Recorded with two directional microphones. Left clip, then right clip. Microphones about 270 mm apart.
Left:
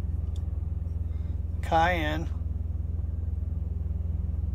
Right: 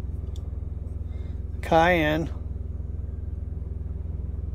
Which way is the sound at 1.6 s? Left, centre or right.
Right.